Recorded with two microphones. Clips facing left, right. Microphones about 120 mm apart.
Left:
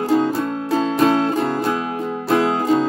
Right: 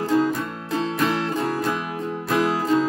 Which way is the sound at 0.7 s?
25° left (ahead or behind).